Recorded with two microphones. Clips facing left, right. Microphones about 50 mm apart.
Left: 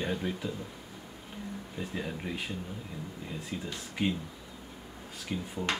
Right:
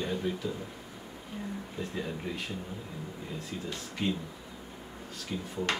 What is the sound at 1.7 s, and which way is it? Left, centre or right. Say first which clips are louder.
Speech: even; centre.